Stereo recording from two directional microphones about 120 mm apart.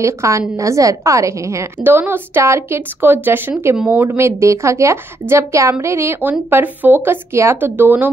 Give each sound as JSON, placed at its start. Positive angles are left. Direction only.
{"t": 0.0, "sound": "a woman's voice", "side_deg": -25}